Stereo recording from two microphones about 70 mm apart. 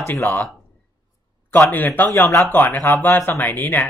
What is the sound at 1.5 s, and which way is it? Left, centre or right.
Speech, left.